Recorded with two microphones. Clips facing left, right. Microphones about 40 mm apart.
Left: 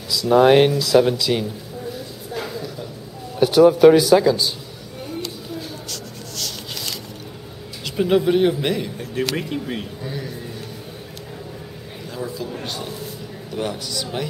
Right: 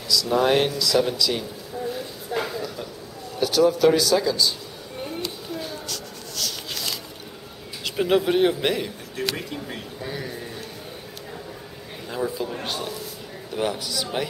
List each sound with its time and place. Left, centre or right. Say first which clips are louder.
0.1 s speech: left 6 dB; centre
2.3 s a sound: right 2 dB; right
3.3 s speech: left 6 dB; centre
5.9 s writing: left 1 dB; centre
7.8 s speech: left 3 dB; centre
9.4 s speech: left 6 dB; left
10.0 s a man's voice: right 2 dB; centre
12.1 s a man's voice: right 2 dB; centre